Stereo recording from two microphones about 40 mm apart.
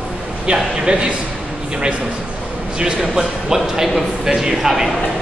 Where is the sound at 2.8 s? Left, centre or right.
Centre.